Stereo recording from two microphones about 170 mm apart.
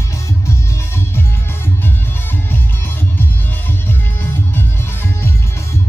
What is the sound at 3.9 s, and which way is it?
Music, 10° left (ahead or behind).